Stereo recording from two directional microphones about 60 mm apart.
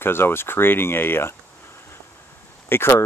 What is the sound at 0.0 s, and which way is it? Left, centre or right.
Speech, left.